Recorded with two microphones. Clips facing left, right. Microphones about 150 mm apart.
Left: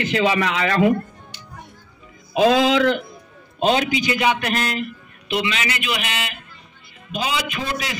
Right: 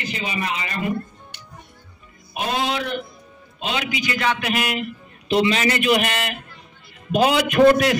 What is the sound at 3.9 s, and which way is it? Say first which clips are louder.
Speech: left 3 dB; 25° left (ahead or behind).